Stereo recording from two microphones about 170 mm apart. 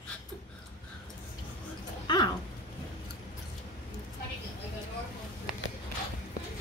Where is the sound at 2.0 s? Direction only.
25° left (ahead or behind).